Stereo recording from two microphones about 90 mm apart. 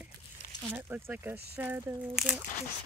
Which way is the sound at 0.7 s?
20° right (ahead or behind).